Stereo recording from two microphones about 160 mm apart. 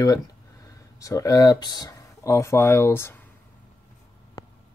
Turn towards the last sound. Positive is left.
turn(degrees=15)  # may be behind; listen again after turning